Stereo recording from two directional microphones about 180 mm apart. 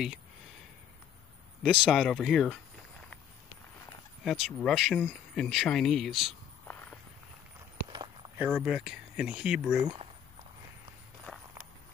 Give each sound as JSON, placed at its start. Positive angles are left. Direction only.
{"t": 1.6, "sound": "speech", "side_deg": 0}
{"t": 4.2, "sound": "speech", "side_deg": 0}
{"t": 8.4, "sound": "speech", "side_deg": -5}
{"t": 11.3, "sound": "walk", "side_deg": 0}